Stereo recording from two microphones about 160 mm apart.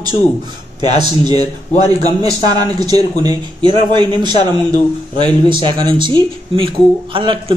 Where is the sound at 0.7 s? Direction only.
25° right (ahead or behind).